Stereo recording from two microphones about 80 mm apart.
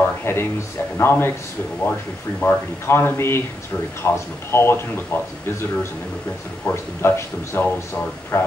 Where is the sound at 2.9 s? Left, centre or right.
Left.